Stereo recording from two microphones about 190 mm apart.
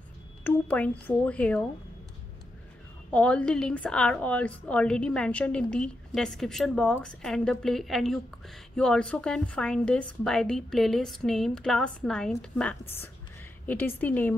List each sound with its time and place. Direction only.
0.4 s speech: 10° left (ahead or behind)
3.1 s a woman's voice: 5° left (ahead or behind)